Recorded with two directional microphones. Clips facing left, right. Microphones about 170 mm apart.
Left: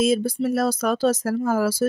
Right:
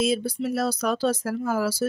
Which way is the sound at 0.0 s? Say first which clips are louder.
Left 4 dB; 45° left (ahead or behind).